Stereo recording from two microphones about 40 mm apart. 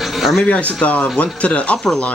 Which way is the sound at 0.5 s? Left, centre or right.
Left.